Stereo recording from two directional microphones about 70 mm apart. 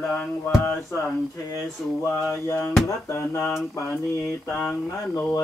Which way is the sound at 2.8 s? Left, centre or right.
Left.